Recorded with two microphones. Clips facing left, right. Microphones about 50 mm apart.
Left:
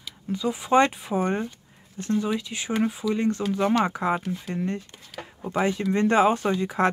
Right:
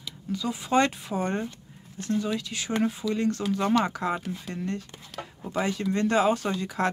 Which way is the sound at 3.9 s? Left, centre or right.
Left.